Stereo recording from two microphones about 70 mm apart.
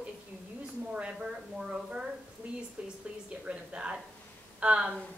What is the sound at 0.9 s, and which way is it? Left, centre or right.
Speech, centre.